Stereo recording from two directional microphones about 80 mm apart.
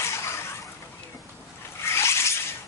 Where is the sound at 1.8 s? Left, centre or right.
Left.